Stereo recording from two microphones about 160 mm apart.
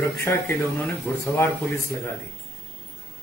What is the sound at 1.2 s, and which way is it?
Speech, 15° left (ahead or behind).